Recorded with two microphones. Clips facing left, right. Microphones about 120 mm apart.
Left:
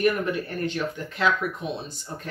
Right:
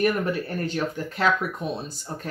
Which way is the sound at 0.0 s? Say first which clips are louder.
Even; 40° right (ahead or behind).